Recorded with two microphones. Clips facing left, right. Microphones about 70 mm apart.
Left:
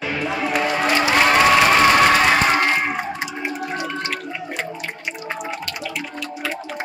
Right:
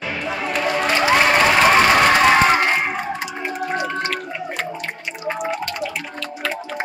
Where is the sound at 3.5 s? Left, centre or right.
Right.